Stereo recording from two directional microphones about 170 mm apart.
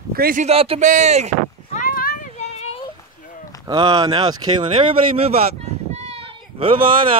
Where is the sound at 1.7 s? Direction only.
55° left (ahead or behind).